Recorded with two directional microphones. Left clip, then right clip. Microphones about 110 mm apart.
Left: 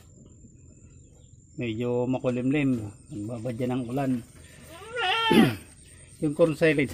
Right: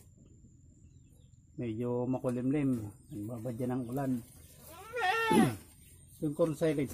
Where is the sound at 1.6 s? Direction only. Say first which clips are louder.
Left 7 dB; 20° right (ahead or behind).